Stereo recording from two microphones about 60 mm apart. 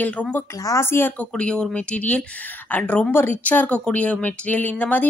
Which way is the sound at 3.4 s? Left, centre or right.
Left.